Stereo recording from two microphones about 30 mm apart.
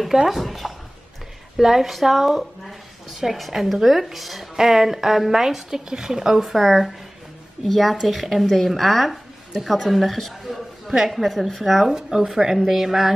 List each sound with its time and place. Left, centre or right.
0.3 s a sound: centre
1.6 s speech: centre
1.9 s speech: centre
6.4 s speech: centre
10.5 s speech: centre
11.9 s speech: centre